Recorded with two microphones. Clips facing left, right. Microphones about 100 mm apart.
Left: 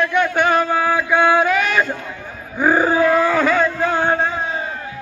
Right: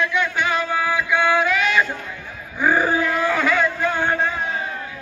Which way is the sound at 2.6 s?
30° left (ahead or behind).